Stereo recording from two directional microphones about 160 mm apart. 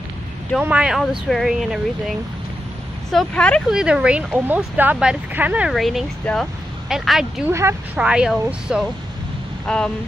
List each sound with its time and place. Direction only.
0.6 s speech: 5° right (ahead or behind)
3.8 s speech: 5° right (ahead or behind)
7.5 s speech: 15° right (ahead or behind); by 9.8 s 5° left (ahead or behind)